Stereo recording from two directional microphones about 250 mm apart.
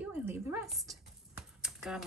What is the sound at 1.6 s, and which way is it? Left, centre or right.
Typing, centre.